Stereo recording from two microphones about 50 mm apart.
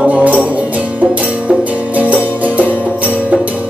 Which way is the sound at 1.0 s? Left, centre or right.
Centre.